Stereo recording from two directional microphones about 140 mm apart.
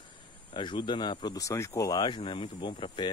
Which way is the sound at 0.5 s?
35° left (ahead or behind).